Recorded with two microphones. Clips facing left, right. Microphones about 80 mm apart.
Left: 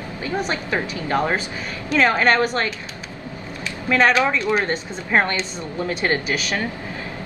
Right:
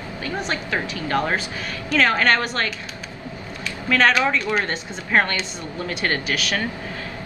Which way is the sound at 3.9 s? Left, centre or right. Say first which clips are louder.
Left 1 dB; centre.